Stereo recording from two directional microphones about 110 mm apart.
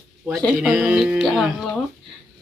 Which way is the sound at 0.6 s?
10° right (ahead or behind).